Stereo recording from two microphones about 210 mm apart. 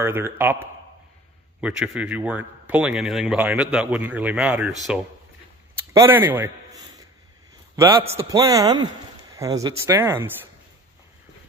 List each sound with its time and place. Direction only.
0.0 s a man's voice: 10° right (ahead or behind)